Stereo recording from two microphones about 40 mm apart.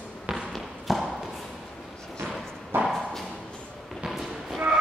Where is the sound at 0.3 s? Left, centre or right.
Right.